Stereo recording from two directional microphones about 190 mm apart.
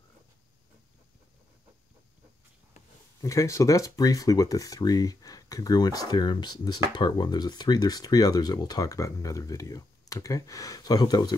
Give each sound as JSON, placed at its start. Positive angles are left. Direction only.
{"t": 3.2, "sound": "speech", "side_deg": 15}